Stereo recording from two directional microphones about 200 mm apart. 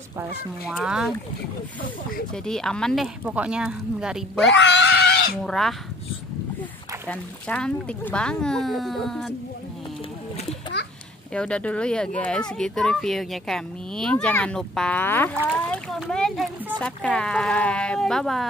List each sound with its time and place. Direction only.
0.2 s speech: 5° right (ahead or behind)
2.3 s speech: 5° left (ahead or behind)
4.5 s screaming: 60° left (ahead or behind)
5.4 s speech: centre (ahead or behind)
7.1 s speech: 5° left (ahead or behind)
11.3 s speech: 5° left (ahead or behind)
15.5 s a sound: 5° left (ahead or behind)
16.8 s speech: 5° left (ahead or behind)